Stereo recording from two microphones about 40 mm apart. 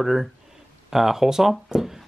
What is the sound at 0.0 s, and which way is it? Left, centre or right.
Speech, centre.